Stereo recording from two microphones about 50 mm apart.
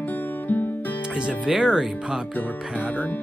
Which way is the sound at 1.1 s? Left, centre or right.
Centre.